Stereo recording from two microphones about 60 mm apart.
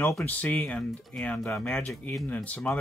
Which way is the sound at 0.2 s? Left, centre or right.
Left.